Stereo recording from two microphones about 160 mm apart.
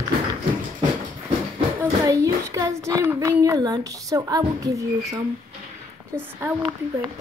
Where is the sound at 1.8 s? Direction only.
20° right (ahead or behind).